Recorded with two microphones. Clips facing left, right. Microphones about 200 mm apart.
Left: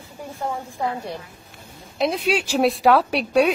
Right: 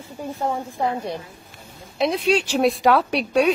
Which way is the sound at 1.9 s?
Centre (ahead or behind).